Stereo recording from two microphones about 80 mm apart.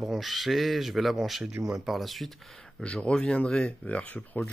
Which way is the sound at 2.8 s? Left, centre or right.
Centre.